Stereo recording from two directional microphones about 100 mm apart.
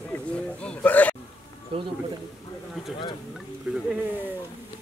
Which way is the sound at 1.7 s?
70° right (ahead or behind).